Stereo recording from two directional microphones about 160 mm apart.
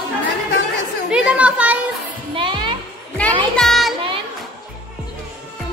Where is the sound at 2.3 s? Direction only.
30° right (ahead or behind).